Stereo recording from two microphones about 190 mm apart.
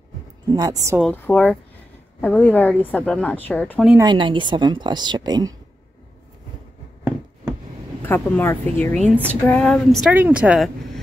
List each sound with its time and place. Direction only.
0.5 s speech: 20° right (ahead or behind)
1.1 s a woman's voice: 10° left (ahead or behind)
4.0 s a woman's voice: 25° right (ahead or behind)
8.0 s a woman's voice: 10° left (ahead or behind)
10.1 s speech: 10° right (ahead or behind)